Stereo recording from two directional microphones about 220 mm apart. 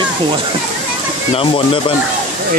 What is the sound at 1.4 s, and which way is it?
Speech, 25° left (ahead or behind).